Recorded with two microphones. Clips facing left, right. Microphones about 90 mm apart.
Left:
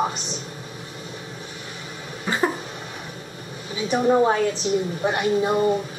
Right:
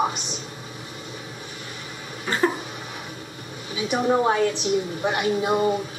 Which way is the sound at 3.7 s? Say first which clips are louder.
Left 2 dB; 5° right (ahead or behind).